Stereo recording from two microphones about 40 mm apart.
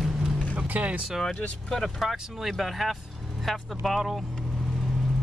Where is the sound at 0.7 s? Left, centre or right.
Right.